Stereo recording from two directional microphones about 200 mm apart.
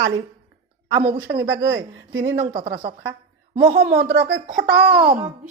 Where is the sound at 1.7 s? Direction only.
65° right (ahead or behind).